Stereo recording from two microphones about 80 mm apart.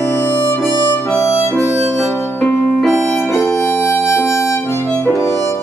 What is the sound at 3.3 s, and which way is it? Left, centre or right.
Music, left.